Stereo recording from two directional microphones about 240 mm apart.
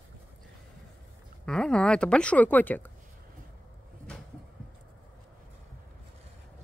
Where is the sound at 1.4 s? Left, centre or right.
Centre.